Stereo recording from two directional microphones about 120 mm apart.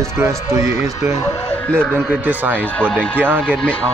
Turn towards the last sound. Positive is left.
turn(degrees=-15)  # may be behind; listen again after turning